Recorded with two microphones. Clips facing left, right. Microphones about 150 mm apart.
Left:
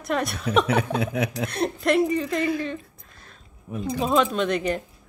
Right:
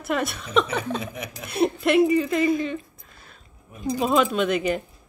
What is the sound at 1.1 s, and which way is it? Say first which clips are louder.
Speech: left 10 dB; 75° left (ahead or behind).